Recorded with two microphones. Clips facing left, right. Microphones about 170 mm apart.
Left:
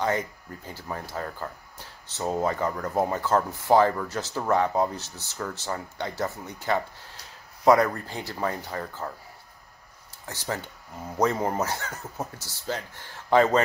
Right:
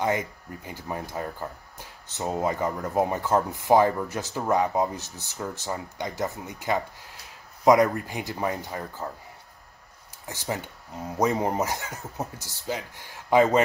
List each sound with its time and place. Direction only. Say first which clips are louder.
0.0 s speech: right 1 dB; 15° right (ahead or behind)
10.2 s speech: right 1 dB; 15° right (ahead or behind)